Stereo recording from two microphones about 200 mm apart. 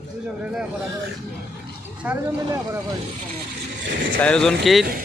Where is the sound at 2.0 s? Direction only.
15° right (ahead or behind).